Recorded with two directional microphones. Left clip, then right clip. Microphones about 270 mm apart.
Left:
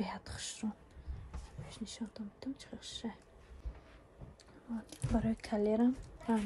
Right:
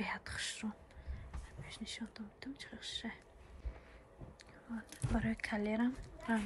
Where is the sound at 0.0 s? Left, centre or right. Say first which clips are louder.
Right 2 dB; centre.